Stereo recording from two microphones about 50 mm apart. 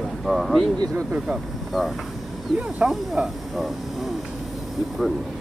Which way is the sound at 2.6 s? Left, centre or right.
Right.